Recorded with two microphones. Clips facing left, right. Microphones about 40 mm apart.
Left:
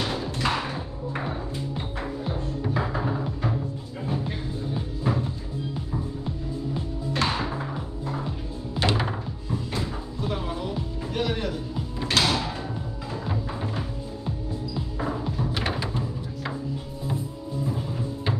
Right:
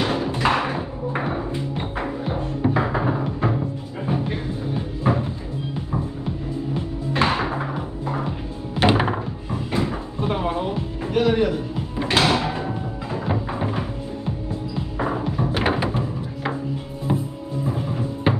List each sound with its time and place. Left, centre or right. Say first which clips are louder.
0.0 s music: right 6 dB; right
6.7 s music: right 5 dB; right
15.0 s music: right 6 dB; right